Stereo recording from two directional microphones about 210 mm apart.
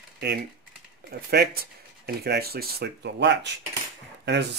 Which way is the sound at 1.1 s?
45° right (ahead or behind).